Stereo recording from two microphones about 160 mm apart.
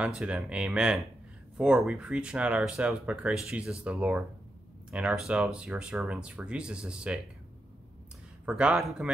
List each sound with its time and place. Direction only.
0.0 s speech: 5° right (ahead or behind)
8.5 s speech: 5° right (ahead or behind)